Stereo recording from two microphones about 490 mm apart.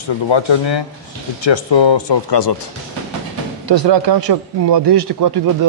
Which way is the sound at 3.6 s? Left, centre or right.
Right.